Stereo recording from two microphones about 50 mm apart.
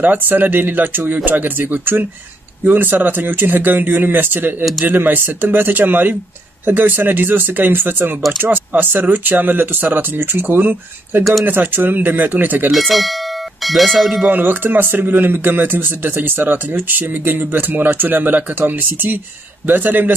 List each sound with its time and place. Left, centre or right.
0.0 s speech: right
12.7 s speech: centre
14.3 s speech: right